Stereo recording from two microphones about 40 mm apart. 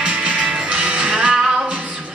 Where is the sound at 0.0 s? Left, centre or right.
Right.